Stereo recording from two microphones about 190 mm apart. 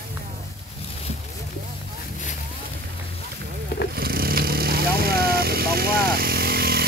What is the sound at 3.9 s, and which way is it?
Vehicle, 50° right (ahead or behind).